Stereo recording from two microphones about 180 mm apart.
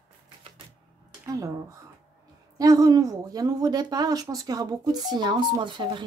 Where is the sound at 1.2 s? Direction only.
15° right (ahead or behind).